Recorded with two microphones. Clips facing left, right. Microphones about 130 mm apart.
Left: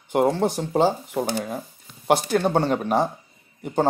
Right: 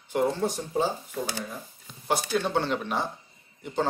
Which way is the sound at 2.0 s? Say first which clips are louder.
Left 7 dB; 60° left (ahead or behind).